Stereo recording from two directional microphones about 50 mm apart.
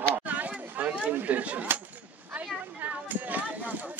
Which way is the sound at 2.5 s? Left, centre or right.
Right.